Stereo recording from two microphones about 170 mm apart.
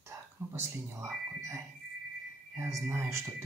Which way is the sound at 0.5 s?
15° right (ahead or behind).